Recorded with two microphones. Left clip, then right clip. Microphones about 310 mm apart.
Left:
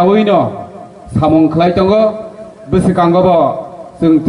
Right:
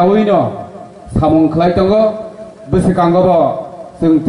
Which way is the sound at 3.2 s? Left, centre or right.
Centre.